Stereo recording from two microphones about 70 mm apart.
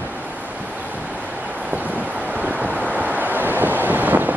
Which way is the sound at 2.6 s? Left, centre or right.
Right.